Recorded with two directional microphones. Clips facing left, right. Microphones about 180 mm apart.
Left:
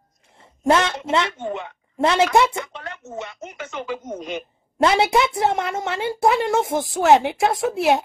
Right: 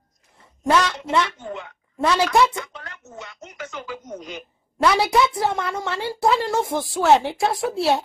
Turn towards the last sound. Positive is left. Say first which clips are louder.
# left 2 dB
turn(degrees=20)  # may be behind; listen again after turning